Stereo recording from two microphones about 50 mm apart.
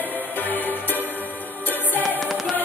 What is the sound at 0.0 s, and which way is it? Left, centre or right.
Music, left.